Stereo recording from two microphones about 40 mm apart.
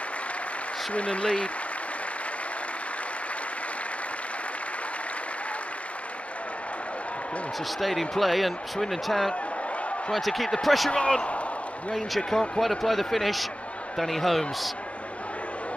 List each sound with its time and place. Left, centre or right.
0.9 s speech: left
7.8 s speech: centre
10.9 s speech: left
12.2 s speech: centre